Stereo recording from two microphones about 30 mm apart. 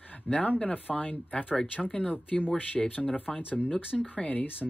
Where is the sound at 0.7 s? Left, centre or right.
Left.